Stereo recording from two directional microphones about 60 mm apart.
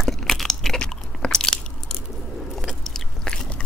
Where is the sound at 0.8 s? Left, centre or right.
Centre.